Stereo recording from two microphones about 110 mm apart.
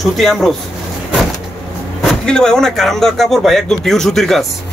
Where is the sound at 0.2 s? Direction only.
Centre (ahead or behind).